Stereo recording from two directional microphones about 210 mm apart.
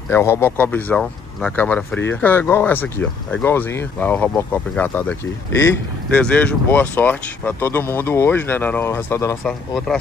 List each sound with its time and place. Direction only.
0.1 s speech: 10° left (ahead or behind)
9.4 s speech: centre (ahead or behind)